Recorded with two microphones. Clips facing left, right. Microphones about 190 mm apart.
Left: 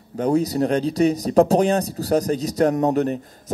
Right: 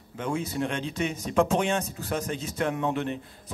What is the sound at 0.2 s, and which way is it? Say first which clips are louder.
Speech: left 10 dB; 40° left (ahead or behind).